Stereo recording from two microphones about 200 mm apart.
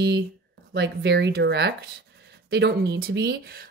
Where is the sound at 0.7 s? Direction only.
55° right (ahead or behind).